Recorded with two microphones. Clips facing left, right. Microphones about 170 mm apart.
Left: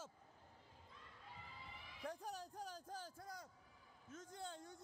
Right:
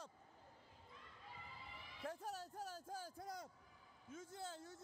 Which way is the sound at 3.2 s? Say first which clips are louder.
Right 4 dB; 20° right (ahead or behind).